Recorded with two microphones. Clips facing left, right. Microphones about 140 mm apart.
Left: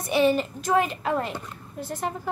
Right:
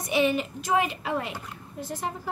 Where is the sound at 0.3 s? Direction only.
45° left (ahead or behind).